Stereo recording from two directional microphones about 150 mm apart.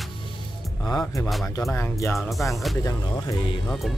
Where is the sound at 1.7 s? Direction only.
20° left (ahead or behind).